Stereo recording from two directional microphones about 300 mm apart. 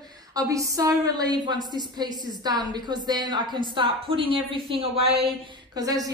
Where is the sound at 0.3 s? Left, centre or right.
Centre.